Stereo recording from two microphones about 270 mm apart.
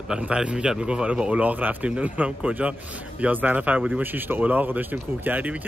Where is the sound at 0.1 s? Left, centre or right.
Centre.